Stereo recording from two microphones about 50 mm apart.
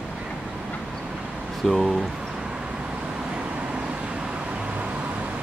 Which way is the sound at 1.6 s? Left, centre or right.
Centre.